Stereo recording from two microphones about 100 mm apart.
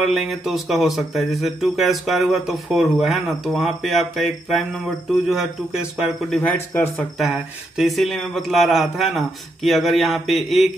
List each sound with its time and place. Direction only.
0.0 s speech: centre (ahead or behind)
6.3 s speech: 15° left (ahead or behind)
7.3 s speech: 5° right (ahead or behind)